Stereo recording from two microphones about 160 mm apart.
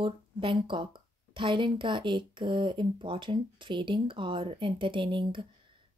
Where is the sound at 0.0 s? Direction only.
30° right (ahead or behind).